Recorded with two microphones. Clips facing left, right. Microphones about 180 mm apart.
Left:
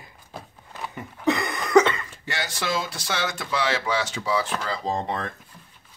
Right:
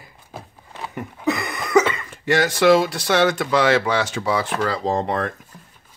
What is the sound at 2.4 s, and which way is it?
Speech, 65° right (ahead or behind).